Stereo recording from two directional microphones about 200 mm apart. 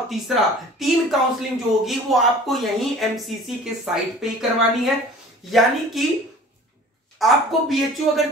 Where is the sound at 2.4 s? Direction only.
Centre (ahead or behind).